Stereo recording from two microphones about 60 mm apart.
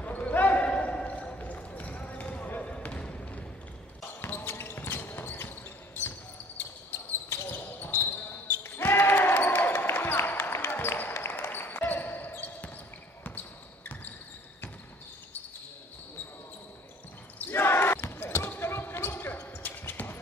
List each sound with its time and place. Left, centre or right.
0.0 s basketball bounce: left
4.2 s basketball bounce: left
17.4 s basketball bounce: left